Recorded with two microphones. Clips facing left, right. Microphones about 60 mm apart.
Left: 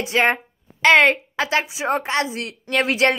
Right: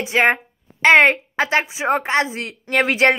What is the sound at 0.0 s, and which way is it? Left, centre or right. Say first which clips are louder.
A child's voice: right 2 dB; right.